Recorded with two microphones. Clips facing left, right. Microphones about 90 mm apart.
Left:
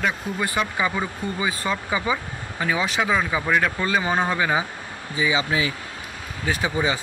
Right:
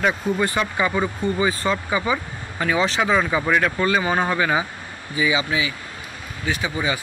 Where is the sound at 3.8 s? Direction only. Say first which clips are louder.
Right 2 dB; 15° left (ahead or behind).